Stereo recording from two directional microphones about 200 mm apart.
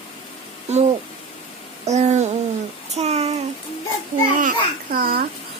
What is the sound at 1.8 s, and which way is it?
Speech, 35° right (ahead or behind).